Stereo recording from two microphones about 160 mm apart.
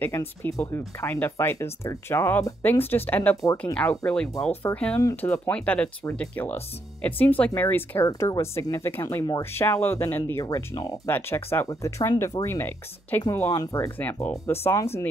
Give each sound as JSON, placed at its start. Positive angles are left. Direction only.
{"t": 0.0, "sound": "speech", "side_deg": 15}